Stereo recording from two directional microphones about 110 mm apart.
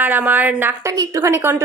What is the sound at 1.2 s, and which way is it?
Speech, 20° right (ahead or behind).